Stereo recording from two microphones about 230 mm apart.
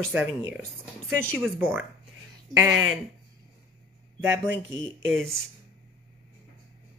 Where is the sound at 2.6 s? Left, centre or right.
Right.